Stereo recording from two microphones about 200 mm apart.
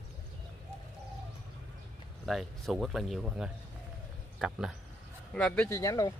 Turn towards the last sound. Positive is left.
turn(degrees=15)  # may be behind; listen again after turning